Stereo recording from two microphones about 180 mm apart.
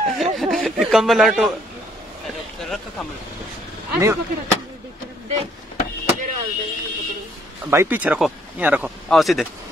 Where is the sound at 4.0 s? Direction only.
15° right (ahead or behind).